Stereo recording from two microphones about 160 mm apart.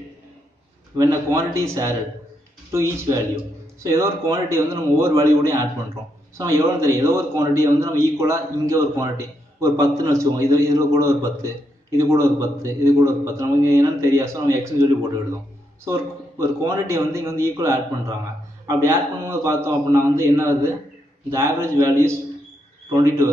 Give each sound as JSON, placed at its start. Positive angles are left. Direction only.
{"t": 0.9, "sound": "a man's voice", "side_deg": -20}